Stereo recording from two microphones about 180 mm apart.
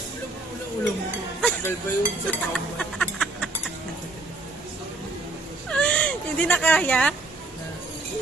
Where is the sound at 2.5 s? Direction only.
5° left (ahead or behind).